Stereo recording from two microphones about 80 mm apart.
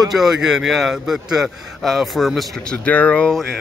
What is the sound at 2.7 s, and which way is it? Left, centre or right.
Speech, centre.